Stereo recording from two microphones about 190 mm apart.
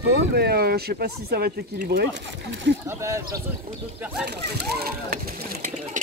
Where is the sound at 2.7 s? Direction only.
75° right (ahead or behind).